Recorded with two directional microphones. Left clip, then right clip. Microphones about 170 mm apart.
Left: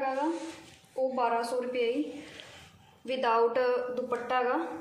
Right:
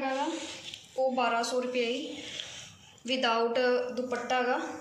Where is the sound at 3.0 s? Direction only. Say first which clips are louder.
Left 1 dB; 40° left (ahead or behind).